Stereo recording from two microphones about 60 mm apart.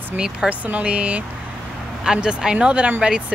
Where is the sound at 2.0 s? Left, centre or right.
Centre.